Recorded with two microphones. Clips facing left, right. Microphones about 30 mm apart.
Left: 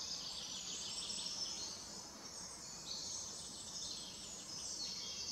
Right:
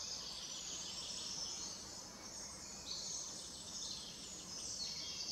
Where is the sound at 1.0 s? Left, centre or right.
Left.